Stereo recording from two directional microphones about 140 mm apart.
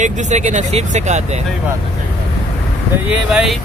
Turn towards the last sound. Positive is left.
turn(degrees=-5)  # may be behind; listen again after turning